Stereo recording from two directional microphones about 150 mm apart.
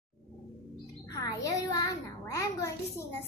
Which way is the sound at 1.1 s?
25° left (ahead or behind).